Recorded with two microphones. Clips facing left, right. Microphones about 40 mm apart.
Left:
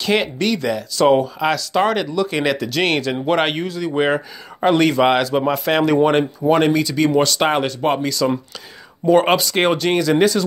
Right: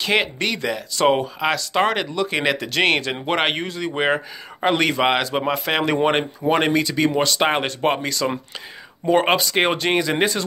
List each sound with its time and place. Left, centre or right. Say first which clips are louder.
0.0 s speech: left 2 dB; right
3.9 s speech: left 2 dB; right
7.6 s speech: left 2 dB; right
9.0 s speech: left 3 dB; centre